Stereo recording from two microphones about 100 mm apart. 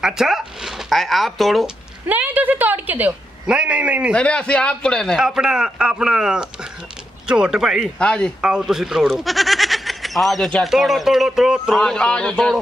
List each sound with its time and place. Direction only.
0.0 s speech: 5° right (ahead or behind)
2.0 s speech: 20° right (ahead or behind)
4.1 s a man's voice: 10° left (ahead or behind)
5.2 s speech: 5° right (ahead or behind)
8.0 s a man's voice: 10° left (ahead or behind)
8.4 s speech: 5° right (ahead or behind)
11.8 s a man's voice: 10° left (ahead or behind)